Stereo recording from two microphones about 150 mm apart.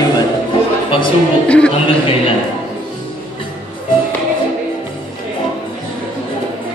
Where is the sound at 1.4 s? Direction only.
5° left (ahead or behind).